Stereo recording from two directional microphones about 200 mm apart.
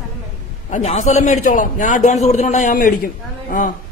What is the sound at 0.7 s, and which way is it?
Speech, 35° left (ahead or behind).